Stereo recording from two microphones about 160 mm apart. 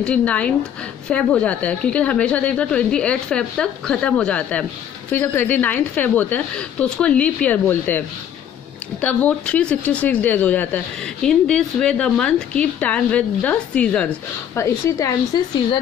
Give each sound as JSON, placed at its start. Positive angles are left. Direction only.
{"t": 0.0, "sound": "a woman's voice", "side_deg": 5}
{"t": 9.0, "sound": "a woman's voice", "side_deg": 10}
{"t": 14.6, "sound": "speech", "side_deg": 20}